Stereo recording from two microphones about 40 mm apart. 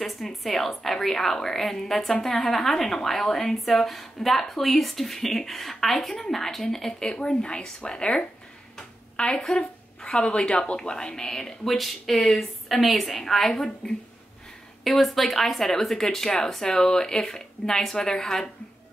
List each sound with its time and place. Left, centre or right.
0.0 s a woman's voice: centre; by 8.3 s left
8.7 s a sound: left
9.6 s a woman's voice: left
11.7 s a woman's voice: centre